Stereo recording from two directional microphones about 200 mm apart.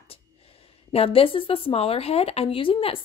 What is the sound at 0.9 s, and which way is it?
Speech, 30° left (ahead or behind).